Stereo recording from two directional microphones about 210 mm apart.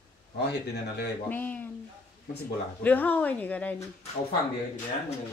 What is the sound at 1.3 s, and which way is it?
Speech, 10° left (ahead or behind).